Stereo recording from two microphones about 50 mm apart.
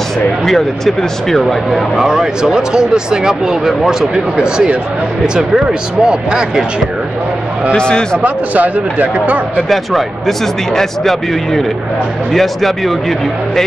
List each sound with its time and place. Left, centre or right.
0.5 s speech: centre
2.0 s speech: centre
7.7 s a man's voice: centre
8.2 s speech: right
9.7 s speech: centre